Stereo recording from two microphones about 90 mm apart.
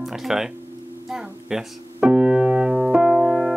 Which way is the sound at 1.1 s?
5° right (ahead or behind).